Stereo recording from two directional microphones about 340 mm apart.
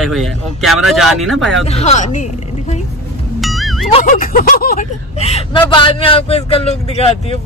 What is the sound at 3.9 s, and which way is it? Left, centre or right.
Speech, left.